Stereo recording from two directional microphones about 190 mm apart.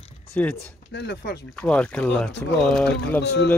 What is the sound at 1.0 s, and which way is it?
Speech, 60° left (ahead or behind).